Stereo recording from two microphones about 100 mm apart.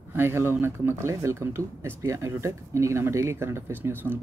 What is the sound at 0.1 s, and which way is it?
Speech, 25° right (ahead or behind).